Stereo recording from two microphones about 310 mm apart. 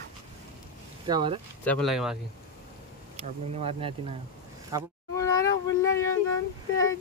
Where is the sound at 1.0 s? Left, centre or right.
Centre.